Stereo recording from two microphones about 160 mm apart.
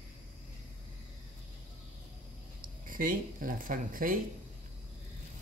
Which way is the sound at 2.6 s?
60° right (ahead or behind).